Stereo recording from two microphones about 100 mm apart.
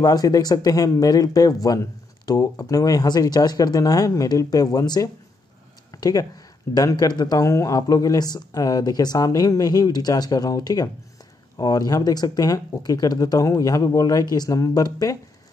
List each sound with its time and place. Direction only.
0.0 s speech: 40° left (ahead or behind)